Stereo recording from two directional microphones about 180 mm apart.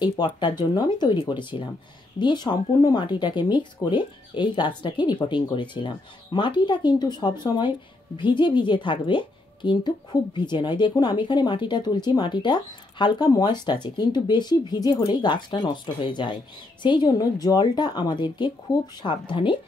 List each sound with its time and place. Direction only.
0.0 s a woman's voice: 25° left (ahead or behind)